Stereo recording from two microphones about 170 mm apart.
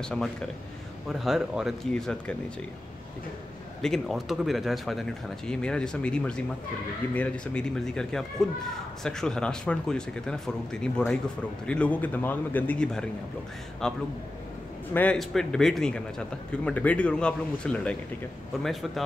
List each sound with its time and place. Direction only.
0.0 s speech: 5° left (ahead or behind)
3.8 s a man's voice: centre (ahead or behind)